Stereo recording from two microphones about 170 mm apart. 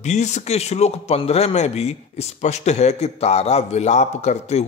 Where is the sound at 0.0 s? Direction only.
45° left (ahead or behind).